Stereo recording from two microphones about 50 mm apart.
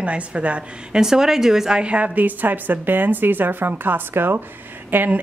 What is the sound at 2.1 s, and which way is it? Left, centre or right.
A woman's voice, right.